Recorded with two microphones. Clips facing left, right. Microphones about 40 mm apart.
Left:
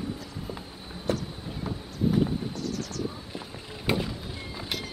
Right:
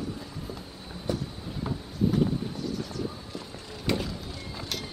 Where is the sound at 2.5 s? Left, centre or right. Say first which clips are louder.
Even; centre.